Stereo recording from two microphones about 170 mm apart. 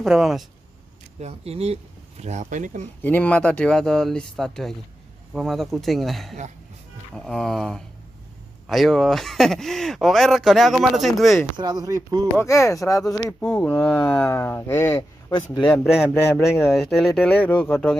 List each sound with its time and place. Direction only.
0.0 s speech: centre (ahead or behind)
1.2 s speech: 35° right (ahead or behind)
3.0 s speech: 10° left (ahead or behind)
11.5 s speech: 20° right (ahead or behind)
12.4 s speech: 15° left (ahead or behind)
13.0 s speech: 5° left (ahead or behind)
15.8 s speech: centre (ahead or behind)